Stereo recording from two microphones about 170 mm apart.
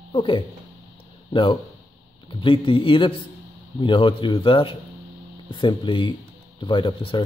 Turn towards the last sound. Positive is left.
turn(degrees=30)  # may be behind; listen again after turning